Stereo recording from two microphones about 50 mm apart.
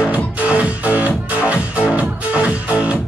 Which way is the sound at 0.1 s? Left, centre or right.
Right.